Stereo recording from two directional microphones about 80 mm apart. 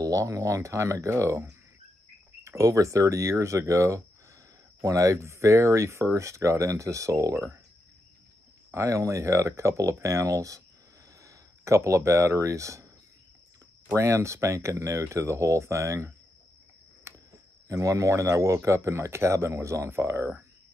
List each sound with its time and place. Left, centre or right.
0.0 s speech: right
8.7 s speech: right
13.9 s speech: right
17.1 s cricket: right
17.6 s speech: right